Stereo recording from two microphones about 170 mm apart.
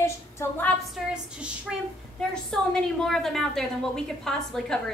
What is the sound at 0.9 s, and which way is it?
A woman's voice, 5° right (ahead or behind).